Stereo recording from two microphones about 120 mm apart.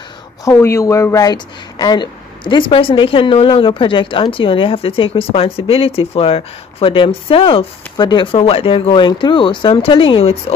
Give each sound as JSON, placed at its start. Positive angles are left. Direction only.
{"t": 0.5, "sound": "a woman's voice", "side_deg": 20}